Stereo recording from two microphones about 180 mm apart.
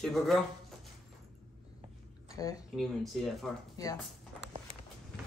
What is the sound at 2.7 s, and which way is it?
Speech, centre (ahead or behind).